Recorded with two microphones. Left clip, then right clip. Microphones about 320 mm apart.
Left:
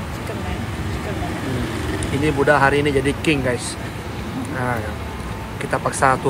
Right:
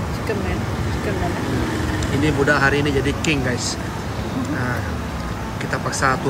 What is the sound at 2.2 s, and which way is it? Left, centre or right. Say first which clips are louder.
Speech: left 2 dB; centre.